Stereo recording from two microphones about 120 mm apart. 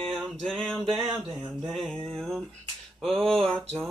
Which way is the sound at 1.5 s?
5° right (ahead or behind).